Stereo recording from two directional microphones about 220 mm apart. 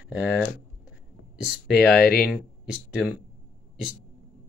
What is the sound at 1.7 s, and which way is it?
Speech, centre (ahead or behind).